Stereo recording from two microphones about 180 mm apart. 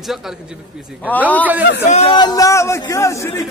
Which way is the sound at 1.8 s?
40° left (ahead or behind).